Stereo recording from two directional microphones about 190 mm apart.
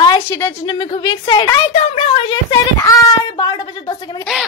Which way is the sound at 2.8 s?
20° left (ahead or behind).